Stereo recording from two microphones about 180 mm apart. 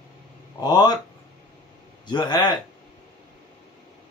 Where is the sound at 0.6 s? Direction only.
20° left (ahead or behind).